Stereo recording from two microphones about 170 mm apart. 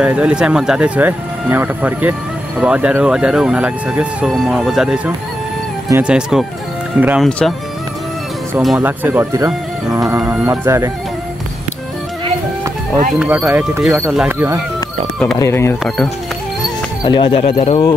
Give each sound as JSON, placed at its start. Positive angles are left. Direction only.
{"t": 0.0, "sound": "speech", "side_deg": -5}
{"t": 7.2, "sound": "speech", "side_deg": 5}
{"t": 8.5, "sound": "speech", "side_deg": -5}
{"t": 9.9, "sound": "music", "side_deg": -20}
{"t": 10.4, "sound": "speech", "side_deg": -15}
{"t": 13.2, "sound": "speech", "side_deg": -10}
{"t": 15.3, "sound": "speech", "side_deg": 15}
{"t": 17.0, "sound": "speech", "side_deg": 30}